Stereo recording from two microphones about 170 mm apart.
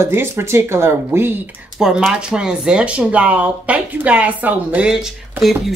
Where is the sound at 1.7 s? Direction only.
Centre (ahead or behind).